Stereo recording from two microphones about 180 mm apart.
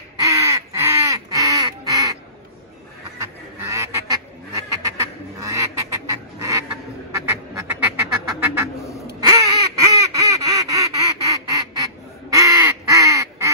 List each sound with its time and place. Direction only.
0.2 s crow: 15° right (ahead or behind)
3.7 s goose: 15° right (ahead or behind)
4.8 s duck: 20° right (ahead or behind)
7.1 s quack: 15° right (ahead or behind)
9.2 s duck: 20° right (ahead or behind)